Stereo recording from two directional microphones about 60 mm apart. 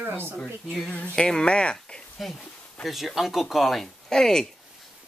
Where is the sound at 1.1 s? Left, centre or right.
Centre.